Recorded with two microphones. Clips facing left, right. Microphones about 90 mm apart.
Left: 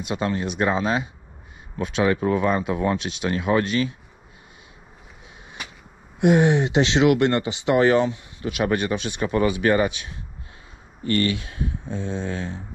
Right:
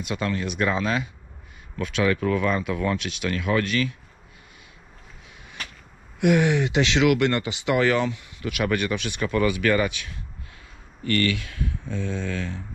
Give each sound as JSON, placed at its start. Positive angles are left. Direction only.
{"t": 0.0, "sound": "speech", "side_deg": 25}
{"t": 5.6, "sound": "a sound", "side_deg": 15}
{"t": 6.1, "sound": "speech", "side_deg": 30}